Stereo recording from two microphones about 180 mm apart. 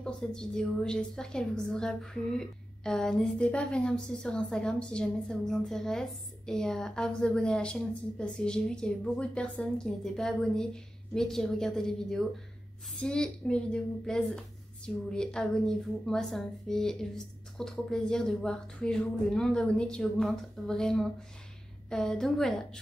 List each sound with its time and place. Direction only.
0.0 s a woman's voice: 5° left (ahead or behind)